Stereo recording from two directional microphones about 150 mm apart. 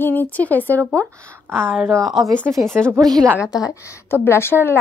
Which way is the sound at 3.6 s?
20° left (ahead or behind).